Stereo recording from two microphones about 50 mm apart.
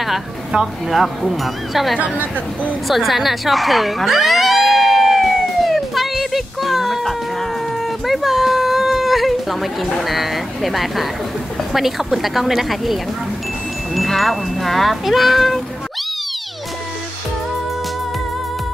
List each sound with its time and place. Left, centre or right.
0.5 s speech: centre
2.0 s a woman's voice: right
2.9 s a sound: centre
8.1 s speech: centre